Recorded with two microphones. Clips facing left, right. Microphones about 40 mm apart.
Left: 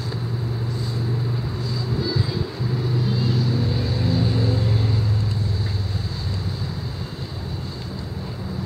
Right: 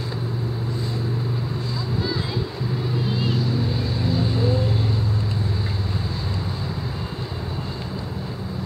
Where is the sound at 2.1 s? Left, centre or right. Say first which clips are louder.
Left 1 dB; right.